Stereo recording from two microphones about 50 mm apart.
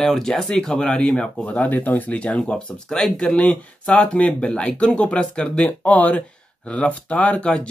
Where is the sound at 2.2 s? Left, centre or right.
Left.